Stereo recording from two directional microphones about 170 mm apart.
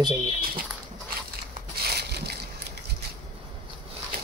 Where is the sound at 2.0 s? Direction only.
75° right (ahead or behind).